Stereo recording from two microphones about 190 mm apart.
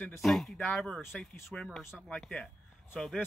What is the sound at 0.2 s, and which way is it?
Speech, centre (ahead or behind).